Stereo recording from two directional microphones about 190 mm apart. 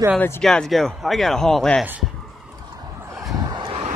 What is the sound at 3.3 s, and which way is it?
Vehicle, 20° right (ahead or behind).